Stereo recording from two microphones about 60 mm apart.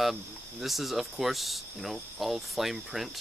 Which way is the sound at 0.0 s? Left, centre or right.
Centre.